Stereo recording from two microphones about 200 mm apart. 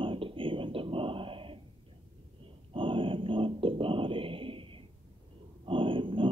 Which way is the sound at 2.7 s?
25° right (ahead or behind).